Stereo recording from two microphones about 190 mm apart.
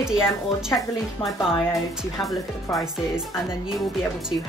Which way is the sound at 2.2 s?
Centre (ahead or behind).